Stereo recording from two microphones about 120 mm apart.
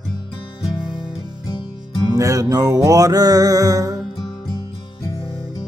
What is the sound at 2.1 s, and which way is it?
Mantra, 25° right (ahead or behind).